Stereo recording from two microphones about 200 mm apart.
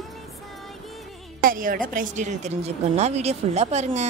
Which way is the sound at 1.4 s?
45° right (ahead or behind).